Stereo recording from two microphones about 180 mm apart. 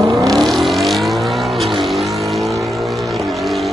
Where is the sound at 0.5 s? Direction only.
Centre (ahead or behind).